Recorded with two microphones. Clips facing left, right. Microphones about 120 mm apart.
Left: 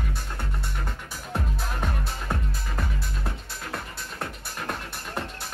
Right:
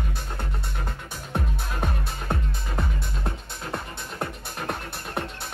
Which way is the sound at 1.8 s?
25° right (ahead or behind).